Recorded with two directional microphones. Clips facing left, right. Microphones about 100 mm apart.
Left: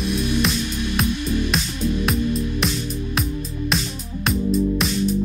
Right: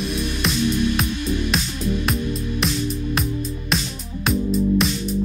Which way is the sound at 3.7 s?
Centre (ahead or behind).